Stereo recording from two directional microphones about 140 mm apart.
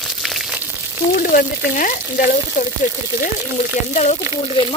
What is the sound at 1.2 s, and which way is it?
Frying, 80° left.